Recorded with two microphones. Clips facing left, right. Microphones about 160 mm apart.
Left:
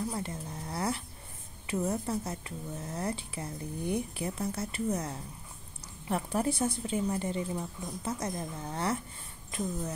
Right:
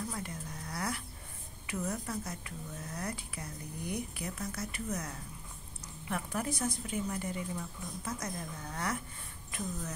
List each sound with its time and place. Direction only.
0.1 s speech: 30° left (ahead or behind)